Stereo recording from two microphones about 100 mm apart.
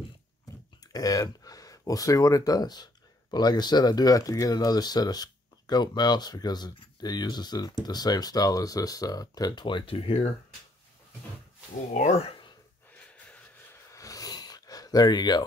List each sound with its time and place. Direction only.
0.9 s speech: 40° left (ahead or behind); by 10.3 s 75° left (ahead or behind)
12.1 s speech: 90° left
12.9 s wheeze: 15° left (ahead or behind)
13.9 s a sound: 35° left (ahead or behind)